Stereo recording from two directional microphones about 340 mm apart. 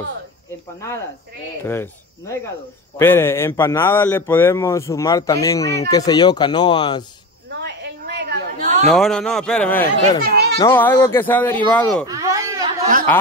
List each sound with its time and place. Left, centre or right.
0.7 s a man's voice: centre
7.6 s a sound: right
8.8 s speech: centre
10.2 s children playing: right
10.6 s speech: centre
12.1 s a sound: centre
13.1 s speech: centre